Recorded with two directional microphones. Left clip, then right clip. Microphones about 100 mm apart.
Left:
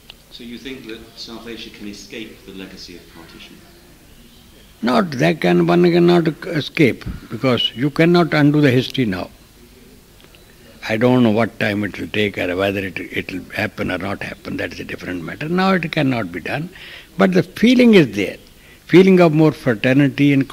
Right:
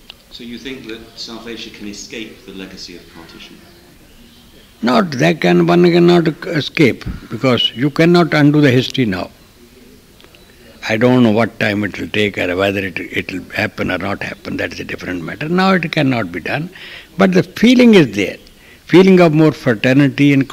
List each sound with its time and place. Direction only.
0.1 s speech: 35° left (ahead or behind)
4.8 s speech: 30° left (ahead or behind)
10.8 s speech: 30° left (ahead or behind)